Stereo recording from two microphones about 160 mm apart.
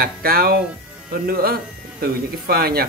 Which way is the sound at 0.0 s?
70° right (ahead or behind).